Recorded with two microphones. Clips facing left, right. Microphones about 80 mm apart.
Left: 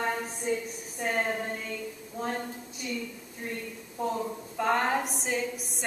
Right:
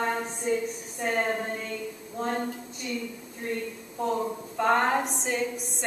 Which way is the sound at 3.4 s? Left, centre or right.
Centre.